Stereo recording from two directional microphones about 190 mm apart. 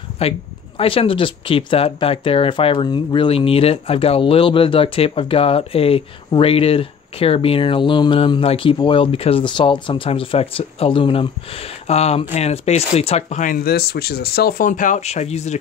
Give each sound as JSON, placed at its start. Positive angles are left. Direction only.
{"t": 0.2, "sound": "speech", "side_deg": 30}